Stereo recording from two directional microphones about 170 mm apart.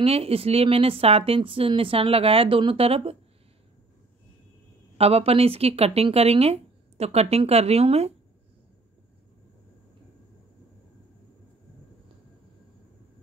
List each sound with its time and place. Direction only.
0.0 s a woman's voice: 35° right (ahead or behind)
4.9 s a woman's voice: 35° right (ahead or behind)